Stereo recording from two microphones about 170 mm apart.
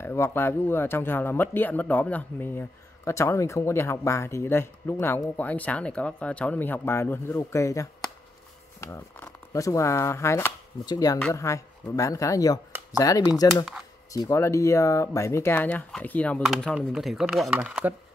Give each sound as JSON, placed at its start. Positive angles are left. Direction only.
{"t": 0.0, "sound": "speech", "side_deg": 15}